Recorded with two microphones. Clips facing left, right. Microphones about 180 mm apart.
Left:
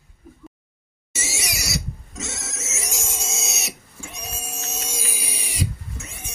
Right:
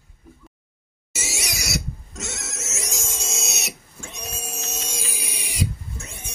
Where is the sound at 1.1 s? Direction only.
Centre (ahead or behind).